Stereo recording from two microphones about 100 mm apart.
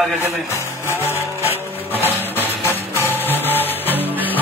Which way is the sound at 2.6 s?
25° left (ahead or behind).